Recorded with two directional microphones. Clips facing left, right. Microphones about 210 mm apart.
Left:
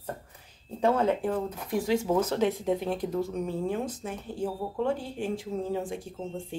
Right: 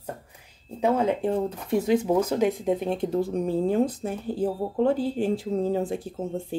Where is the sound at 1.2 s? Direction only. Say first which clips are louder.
Right 4 dB; 25° right (ahead or behind).